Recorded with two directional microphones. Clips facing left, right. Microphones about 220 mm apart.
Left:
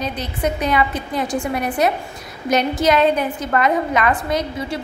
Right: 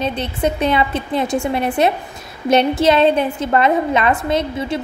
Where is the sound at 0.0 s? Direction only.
25° right (ahead or behind).